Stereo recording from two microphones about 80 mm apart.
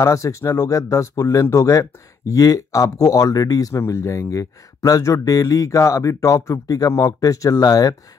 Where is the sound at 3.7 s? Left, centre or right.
Left.